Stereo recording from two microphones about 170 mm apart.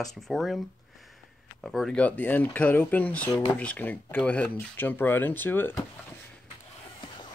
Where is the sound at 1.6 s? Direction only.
Centre (ahead or behind).